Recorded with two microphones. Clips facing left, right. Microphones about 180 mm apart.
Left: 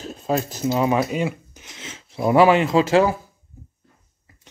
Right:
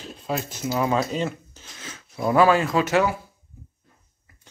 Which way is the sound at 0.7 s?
20° left (ahead or behind).